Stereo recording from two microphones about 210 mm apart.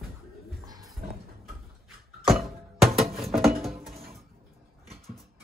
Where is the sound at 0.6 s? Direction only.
20° right (ahead or behind).